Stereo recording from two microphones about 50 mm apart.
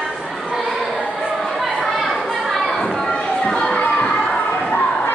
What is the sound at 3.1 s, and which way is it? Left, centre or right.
Children playing, centre.